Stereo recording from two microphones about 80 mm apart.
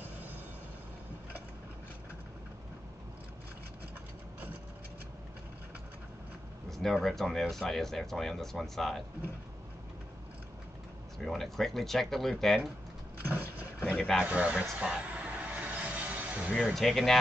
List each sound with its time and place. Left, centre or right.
6.8 s speech: centre
11.2 s speech: centre
13.9 s speech: centre
14.2 s speech: centre
14.8 s a sound: centre
16.5 s speech: centre